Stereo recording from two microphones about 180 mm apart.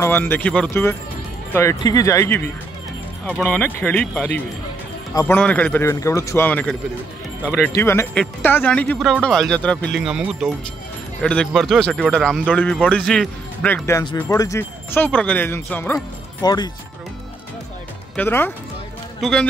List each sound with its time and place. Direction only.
0.0 s a man's voice: 10° left (ahead or behind)
18.1 s speech: 10° left (ahead or behind)